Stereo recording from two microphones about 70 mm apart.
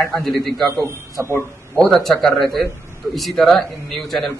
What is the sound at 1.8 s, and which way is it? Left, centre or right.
A man's voice, centre.